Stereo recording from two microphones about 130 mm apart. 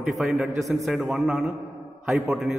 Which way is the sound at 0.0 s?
Centre (ahead or behind).